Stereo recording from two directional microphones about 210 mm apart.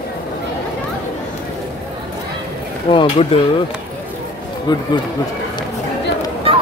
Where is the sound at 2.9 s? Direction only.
25° left (ahead or behind).